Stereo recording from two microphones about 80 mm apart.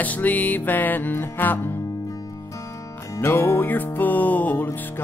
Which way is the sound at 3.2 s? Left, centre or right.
Left.